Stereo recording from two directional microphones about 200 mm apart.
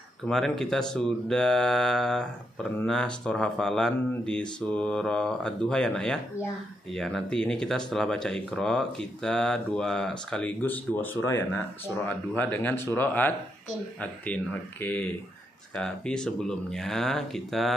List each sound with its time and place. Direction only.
0.3 s speech: 5° left (ahead or behind)